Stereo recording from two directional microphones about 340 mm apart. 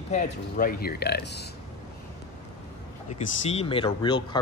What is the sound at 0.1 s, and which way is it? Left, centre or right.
Speech, left.